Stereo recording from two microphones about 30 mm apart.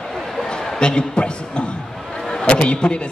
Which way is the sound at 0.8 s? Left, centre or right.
Left.